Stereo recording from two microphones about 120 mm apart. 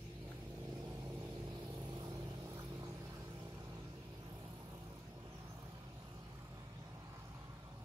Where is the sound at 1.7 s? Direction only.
40° right (ahead or behind).